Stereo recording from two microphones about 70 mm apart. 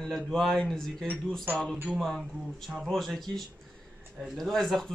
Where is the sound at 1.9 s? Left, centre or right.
Centre.